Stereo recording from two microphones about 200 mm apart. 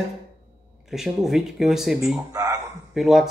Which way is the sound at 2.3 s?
15° right (ahead or behind).